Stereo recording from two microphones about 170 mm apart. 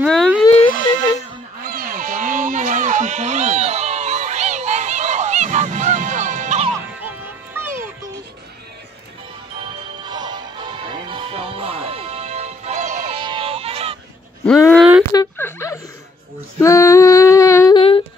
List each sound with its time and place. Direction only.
0.0 s speech: 5° left (ahead or behind)
0.6 s music: 35° left (ahead or behind)
1.6 s a sound: 55° right (ahead or behind)
7.0 s music: 15° right (ahead or behind)
9.6 s music: 25° right (ahead or behind); by 13.2 s 40° right (ahead or behind)
13.2 s music: 30° right (ahead or behind)
14.8 s a sound: 5° right (ahead or behind)
15.1 s a sound: 15° left (ahead or behind)
16.5 s female singing: 15° left (ahead or behind)
17.7 s humming: 35° left (ahead or behind)